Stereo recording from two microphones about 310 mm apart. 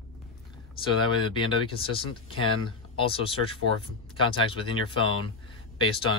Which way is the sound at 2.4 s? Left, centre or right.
Centre.